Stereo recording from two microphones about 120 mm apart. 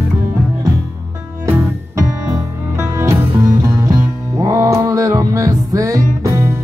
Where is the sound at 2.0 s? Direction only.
25° right (ahead or behind).